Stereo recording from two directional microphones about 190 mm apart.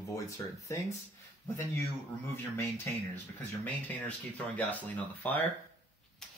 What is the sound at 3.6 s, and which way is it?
Speech, 10° left (ahead or behind).